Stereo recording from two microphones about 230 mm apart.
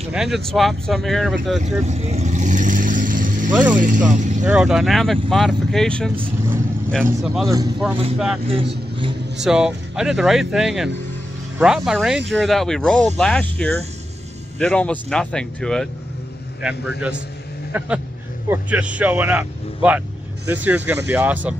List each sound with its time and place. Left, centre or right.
0.1 s speech: centre
1.6 s vehicle: right
3.7 s speech: right
4.5 s speech: centre
7.4 s speech: centre
9.4 s speech: centre